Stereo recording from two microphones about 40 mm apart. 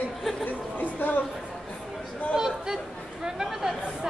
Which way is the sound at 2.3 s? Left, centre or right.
Centre.